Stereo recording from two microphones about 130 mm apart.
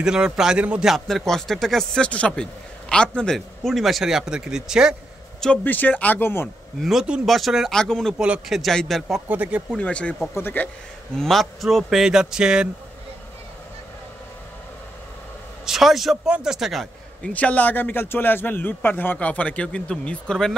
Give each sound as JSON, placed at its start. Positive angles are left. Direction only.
{"t": 0.0, "sound": "speech", "side_deg": -5}
{"t": 5.4, "sound": "a man's voice", "side_deg": 10}
{"t": 6.8, "sound": "speech", "side_deg": -5}
{"t": 9.3, "sound": "speech", "side_deg": -10}
{"t": 9.8, "sound": "a man's voice", "side_deg": 10}
{"t": 11.1, "sound": "speech", "side_deg": 0}
{"t": 15.6, "sound": "a man's voice", "side_deg": 0}
{"t": 17.3, "sound": "a man's voice", "side_deg": 10}